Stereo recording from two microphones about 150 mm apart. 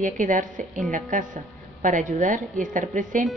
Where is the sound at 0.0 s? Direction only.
60° right (ahead or behind).